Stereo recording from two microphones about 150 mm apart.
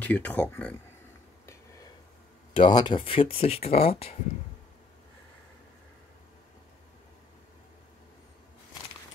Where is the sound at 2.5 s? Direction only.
30° left (ahead or behind).